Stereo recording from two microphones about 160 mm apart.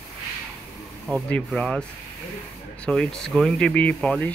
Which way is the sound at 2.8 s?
5° left (ahead or behind).